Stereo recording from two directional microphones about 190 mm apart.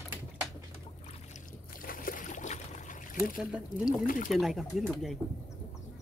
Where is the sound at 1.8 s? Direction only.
45° left (ahead or behind).